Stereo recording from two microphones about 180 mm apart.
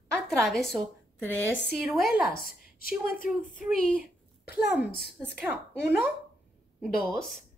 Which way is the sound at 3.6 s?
5° right (ahead or behind).